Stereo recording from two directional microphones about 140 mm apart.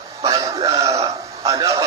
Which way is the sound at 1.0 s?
25° right (ahead or behind).